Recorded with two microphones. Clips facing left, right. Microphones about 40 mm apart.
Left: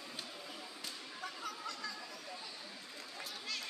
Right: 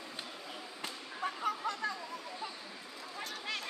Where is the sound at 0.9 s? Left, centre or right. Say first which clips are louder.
Right 8 dB; right.